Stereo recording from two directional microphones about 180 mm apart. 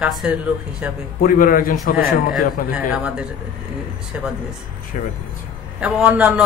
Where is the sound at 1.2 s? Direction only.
50° left (ahead or behind).